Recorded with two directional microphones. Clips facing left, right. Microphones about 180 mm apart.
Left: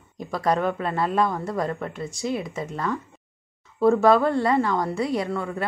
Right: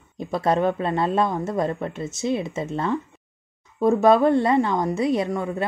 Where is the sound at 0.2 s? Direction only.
25° right (ahead or behind).